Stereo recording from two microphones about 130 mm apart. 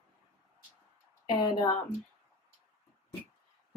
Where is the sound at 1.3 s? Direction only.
40° left (ahead or behind).